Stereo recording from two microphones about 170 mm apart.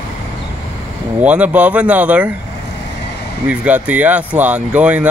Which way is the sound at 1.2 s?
10° right (ahead or behind).